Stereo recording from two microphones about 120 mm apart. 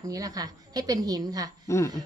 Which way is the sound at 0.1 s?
30° right (ahead or behind).